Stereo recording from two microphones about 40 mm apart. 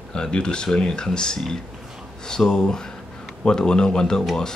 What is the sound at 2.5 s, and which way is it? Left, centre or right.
Speech, centre.